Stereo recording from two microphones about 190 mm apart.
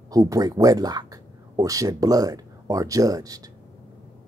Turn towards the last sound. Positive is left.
turn(degrees=-20)  # may be behind; listen again after turning